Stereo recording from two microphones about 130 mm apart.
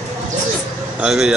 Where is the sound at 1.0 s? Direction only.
5° right (ahead or behind).